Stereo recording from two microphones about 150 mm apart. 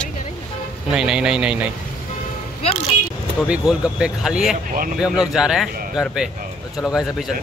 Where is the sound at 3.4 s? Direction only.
5° right (ahead or behind).